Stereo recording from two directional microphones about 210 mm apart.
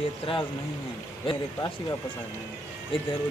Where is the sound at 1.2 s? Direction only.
20° left (ahead or behind).